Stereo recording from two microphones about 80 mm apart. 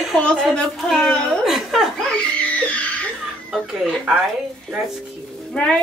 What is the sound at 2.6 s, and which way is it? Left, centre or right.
Music, centre.